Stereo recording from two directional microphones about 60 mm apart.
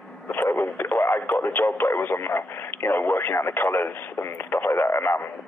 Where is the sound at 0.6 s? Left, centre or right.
Left.